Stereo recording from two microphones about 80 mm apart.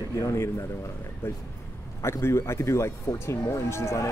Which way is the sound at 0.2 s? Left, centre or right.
Left.